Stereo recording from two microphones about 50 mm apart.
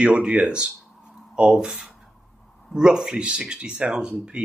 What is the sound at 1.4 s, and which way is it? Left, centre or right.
Speech, centre.